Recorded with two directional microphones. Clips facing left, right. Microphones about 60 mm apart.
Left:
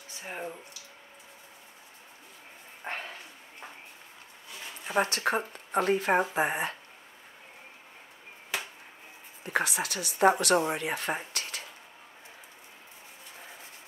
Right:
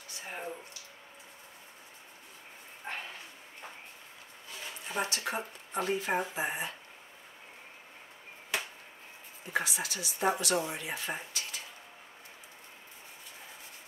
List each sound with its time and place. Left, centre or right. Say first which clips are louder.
0.2 s a sound: left 2 dB; centre
2.9 s dog: left 3 dB; left
4.8 s speech: left 7 dB; left
9.5 s a woman's voice: left 4 dB; left